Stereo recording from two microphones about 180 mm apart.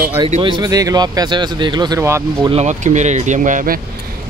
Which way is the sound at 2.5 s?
40° right (ahead or behind).